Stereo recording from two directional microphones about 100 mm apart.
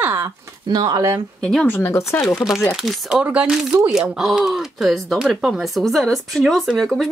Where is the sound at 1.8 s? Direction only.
25° left (ahead or behind).